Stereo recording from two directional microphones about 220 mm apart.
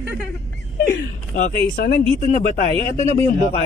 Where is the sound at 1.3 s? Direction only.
35° left (ahead or behind).